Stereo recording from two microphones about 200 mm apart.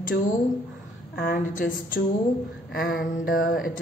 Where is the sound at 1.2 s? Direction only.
45° left (ahead or behind).